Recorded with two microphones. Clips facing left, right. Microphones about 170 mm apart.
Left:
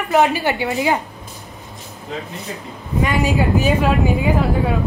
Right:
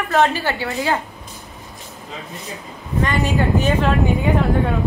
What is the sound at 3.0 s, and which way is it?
Speech, 10° left (ahead or behind).